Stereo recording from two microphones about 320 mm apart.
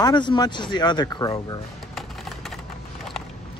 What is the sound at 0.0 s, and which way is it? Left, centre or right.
Speech, centre.